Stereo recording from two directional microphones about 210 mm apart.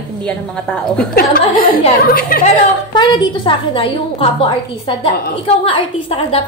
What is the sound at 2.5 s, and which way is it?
A woman's voice, 20° left (ahead or behind).